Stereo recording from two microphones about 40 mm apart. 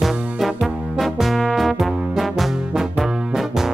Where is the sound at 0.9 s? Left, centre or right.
Centre.